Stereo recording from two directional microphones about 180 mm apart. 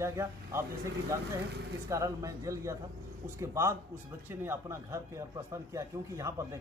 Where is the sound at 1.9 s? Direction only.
15° right (ahead or behind).